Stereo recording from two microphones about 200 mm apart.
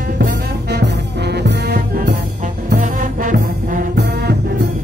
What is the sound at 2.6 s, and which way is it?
Brass instrument, 45° right (ahead or behind).